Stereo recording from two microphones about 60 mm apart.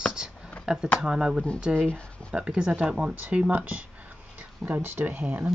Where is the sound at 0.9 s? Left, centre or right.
Centre.